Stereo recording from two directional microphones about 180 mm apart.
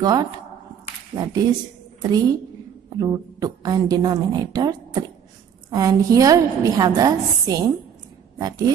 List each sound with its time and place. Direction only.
0.0 s a woman's voice: 20° right (ahead or behind)